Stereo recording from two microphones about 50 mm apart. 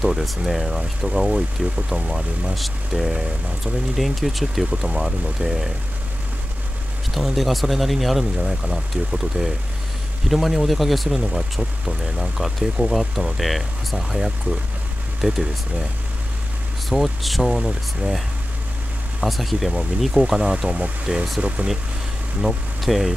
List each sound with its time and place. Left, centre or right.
0.0 s speech: centre
4.6 s speech: centre
7.2 s speech: centre
15.2 s speech: right
16.9 s speech: centre
17.6 s speech: centre
19.2 s speech: centre; by 21.6 s right
22.4 s speech: centre